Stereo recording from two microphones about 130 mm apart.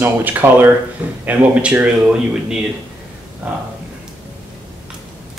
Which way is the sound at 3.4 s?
15° right (ahead or behind).